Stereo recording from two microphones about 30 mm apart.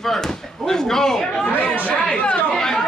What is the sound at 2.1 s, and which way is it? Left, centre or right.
Speech, left.